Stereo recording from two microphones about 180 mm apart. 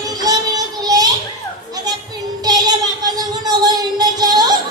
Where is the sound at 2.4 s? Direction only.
20° right (ahead or behind).